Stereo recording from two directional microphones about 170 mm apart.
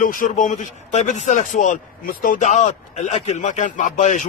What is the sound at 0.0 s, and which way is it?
Speech, 50° left (ahead or behind).